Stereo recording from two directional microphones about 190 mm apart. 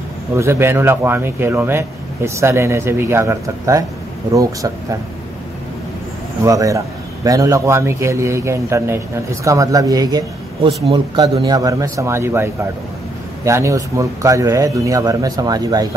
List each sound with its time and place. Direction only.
0.3 s a man's voice: 15° right (ahead or behind)
6.4 s a man's voice: 15° right (ahead or behind)